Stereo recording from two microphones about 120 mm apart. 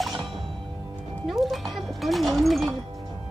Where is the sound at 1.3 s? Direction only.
Centre (ahead or behind).